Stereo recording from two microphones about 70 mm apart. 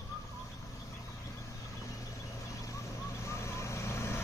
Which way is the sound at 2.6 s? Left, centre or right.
Left.